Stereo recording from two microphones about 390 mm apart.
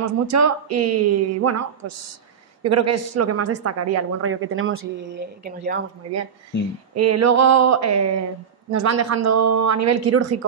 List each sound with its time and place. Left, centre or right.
0.0 s a woman's voice: right
7.0 s a woman's voice: right